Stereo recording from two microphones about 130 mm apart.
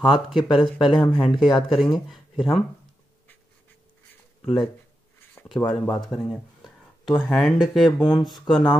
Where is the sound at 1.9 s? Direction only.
Centre (ahead or behind).